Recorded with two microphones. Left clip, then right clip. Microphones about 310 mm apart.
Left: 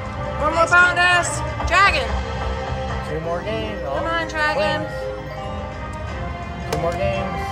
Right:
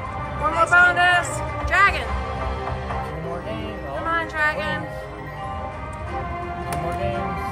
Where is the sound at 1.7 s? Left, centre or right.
Centre.